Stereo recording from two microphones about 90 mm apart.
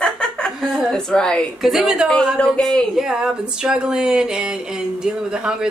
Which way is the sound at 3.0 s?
5° right (ahead or behind).